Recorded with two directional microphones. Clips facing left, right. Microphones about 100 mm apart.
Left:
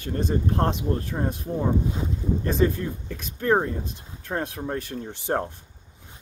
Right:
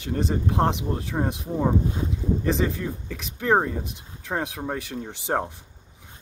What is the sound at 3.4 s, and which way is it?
Speech, 15° right (ahead or behind).